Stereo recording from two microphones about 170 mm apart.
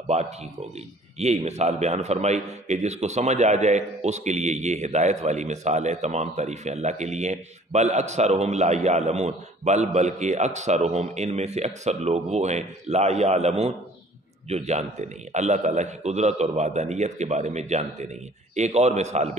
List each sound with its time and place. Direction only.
1.1 s a man's voice: 40° right (ahead or behind)